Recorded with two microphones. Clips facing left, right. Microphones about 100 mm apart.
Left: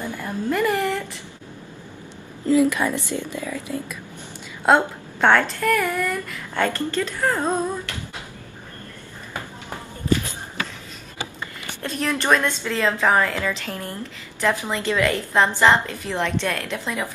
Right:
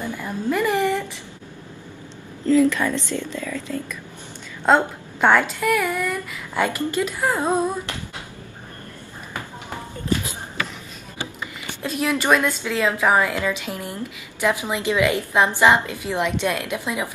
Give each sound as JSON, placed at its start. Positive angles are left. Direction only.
{"t": 0.2, "sound": "a woman's voice", "side_deg": 0}
{"t": 2.4, "sound": "speech", "side_deg": 15}
{"t": 4.6, "sound": "a woman's voice", "side_deg": 0}
{"t": 11.8, "sound": "a woman's voice", "side_deg": -10}